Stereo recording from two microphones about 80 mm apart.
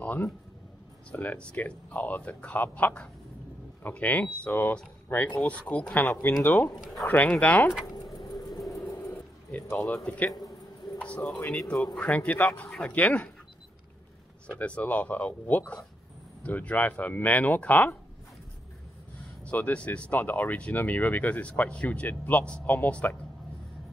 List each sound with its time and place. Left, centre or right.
0.0 s speech: centre
6.7 s speech: centre
7.2 s speech: centre
7.8 s keys jangling: left
8.5 s a sound: centre
8.8 s dog: left
9.1 s a sound: left
10.0 s speech: centre
11.0 s a sound: centre
11.8 s speech: centre
14.5 s speech: centre
19.4 s speech: centre